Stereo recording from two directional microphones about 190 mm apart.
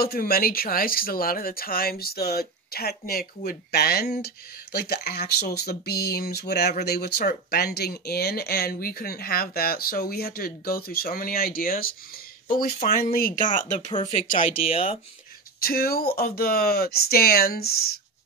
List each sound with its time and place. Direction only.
0.0 s speech: 55° left (ahead or behind)
15.6 s speech: 50° left (ahead or behind)